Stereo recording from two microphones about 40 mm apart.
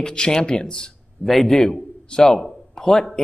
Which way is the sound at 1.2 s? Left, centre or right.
Centre.